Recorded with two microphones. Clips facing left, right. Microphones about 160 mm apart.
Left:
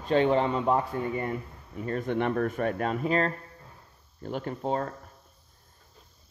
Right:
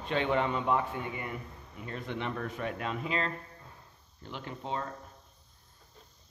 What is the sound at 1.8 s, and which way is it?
Speech, 50° left (ahead or behind).